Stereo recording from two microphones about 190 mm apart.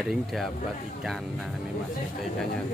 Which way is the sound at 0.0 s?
Centre (ahead or behind).